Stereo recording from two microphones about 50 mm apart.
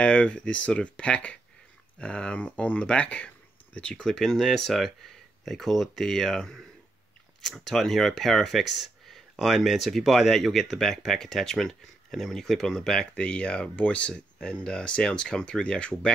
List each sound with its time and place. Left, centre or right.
0.0 s speech: left
13.1 s speech: left